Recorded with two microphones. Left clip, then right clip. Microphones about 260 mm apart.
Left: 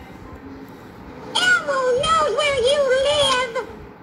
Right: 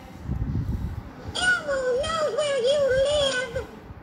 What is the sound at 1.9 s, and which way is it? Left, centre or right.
Music, left.